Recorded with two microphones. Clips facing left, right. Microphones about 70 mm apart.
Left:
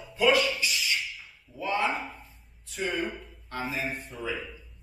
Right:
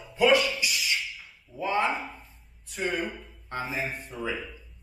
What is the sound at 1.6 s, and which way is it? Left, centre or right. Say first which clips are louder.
Speech: right 2 dB; centre.